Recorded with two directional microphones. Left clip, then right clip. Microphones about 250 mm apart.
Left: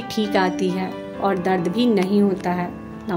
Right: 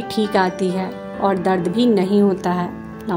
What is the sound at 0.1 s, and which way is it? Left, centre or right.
Speech, centre.